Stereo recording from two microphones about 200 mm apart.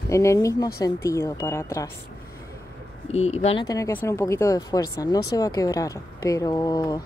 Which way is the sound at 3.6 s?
15° left (ahead or behind).